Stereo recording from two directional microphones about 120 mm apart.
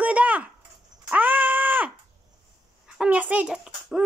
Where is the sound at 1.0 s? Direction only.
15° right (ahead or behind).